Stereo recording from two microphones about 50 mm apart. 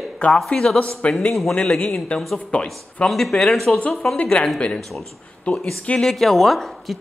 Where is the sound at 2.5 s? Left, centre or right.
Left.